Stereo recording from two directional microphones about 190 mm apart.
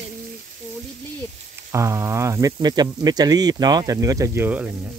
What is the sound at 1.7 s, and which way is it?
Speech, 15° right (ahead or behind).